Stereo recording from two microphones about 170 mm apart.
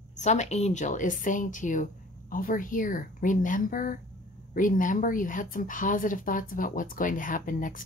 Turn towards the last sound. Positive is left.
turn(degrees=50)  # may be behind; listen again after turning